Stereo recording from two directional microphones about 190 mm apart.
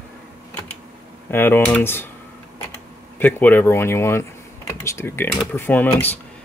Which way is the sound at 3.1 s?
10° left (ahead or behind).